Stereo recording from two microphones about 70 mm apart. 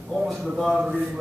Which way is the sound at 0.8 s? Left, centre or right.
Centre.